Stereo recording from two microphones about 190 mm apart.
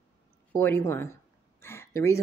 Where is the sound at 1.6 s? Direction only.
15° left (ahead or behind).